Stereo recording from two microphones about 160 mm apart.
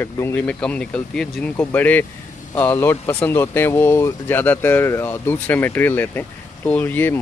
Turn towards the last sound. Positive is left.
turn(degrees=15)  # may be behind; listen again after turning